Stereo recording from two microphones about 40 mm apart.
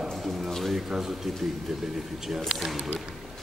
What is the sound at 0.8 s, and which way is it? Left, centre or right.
A man's voice, centre.